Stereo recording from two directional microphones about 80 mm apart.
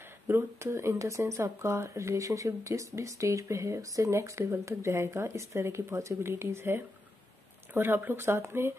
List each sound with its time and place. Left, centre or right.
0.3 s speech: right